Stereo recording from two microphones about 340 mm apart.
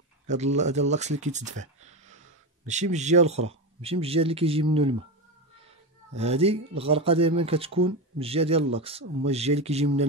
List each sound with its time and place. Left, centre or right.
0.3 s speech: centre
6.1 s speech: centre